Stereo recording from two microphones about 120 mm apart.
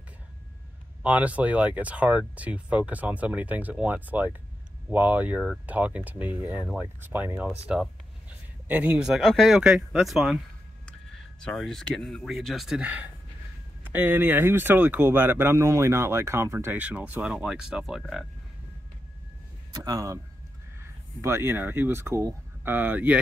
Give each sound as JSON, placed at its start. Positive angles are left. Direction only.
{"t": 1.0, "sound": "speech", "side_deg": -10}
{"t": 11.4, "sound": "speech", "side_deg": 0}
{"t": 19.7, "sound": "speech", "side_deg": -30}
{"t": 21.2, "sound": "speech", "side_deg": -20}